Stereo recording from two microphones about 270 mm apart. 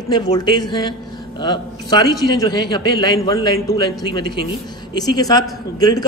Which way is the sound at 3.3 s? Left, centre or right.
Right.